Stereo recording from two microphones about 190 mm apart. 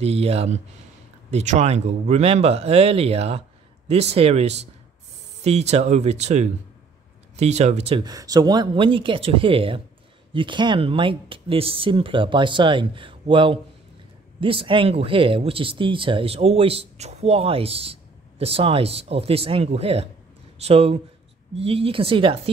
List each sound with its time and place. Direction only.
0.0 s speech: 30° right (ahead or behind)